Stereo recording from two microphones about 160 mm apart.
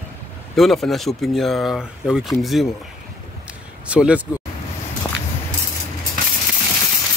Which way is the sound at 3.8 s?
10° right (ahead or behind).